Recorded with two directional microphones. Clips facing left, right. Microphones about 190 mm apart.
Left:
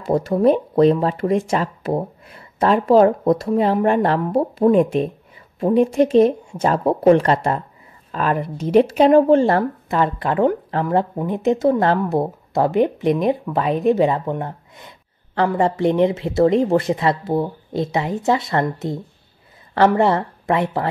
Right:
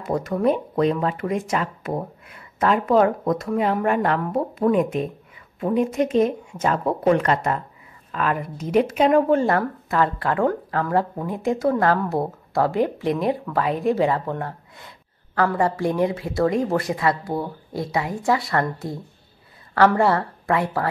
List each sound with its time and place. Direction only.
0.0 s a woman's voice: 30° left (ahead or behind)